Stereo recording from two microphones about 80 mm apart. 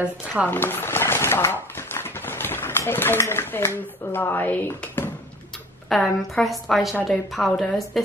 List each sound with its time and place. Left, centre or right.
0.5 s speech: left
5.9 s a woman's voice: centre